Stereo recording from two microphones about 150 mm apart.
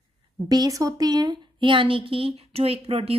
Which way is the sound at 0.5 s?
25° right (ahead or behind).